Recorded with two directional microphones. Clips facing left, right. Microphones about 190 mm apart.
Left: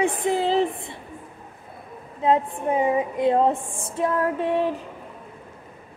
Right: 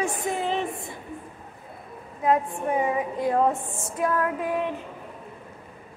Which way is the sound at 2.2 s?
25° left (ahead or behind).